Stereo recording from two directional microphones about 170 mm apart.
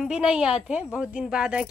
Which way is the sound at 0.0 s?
5° right (ahead or behind).